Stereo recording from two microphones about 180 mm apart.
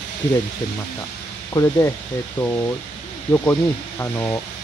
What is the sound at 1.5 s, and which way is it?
Speech, 20° left (ahead or behind).